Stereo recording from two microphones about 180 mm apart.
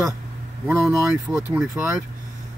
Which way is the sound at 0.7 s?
5° right (ahead or behind).